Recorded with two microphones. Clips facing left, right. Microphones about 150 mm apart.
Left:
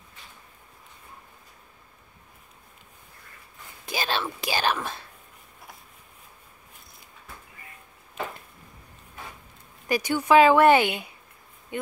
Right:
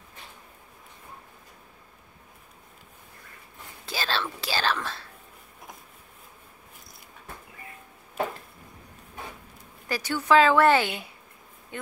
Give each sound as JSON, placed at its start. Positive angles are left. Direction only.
{"t": 3.8, "sound": "whispering", "side_deg": 15}
{"t": 9.8, "sound": "speech", "side_deg": 15}